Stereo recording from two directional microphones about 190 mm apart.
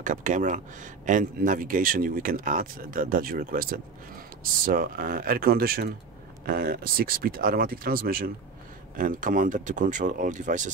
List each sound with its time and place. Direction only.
0.0 s speech: 40° right (ahead or behind)